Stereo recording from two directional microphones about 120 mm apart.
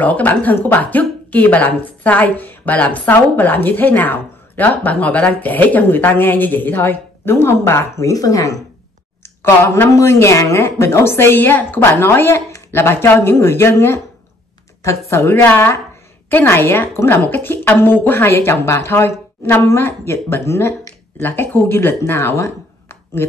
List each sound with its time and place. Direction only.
0.0 s a woman's voice: 15° left (ahead or behind)